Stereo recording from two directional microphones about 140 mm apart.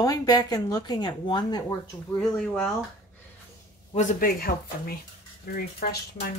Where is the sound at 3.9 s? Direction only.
75° left (ahead or behind).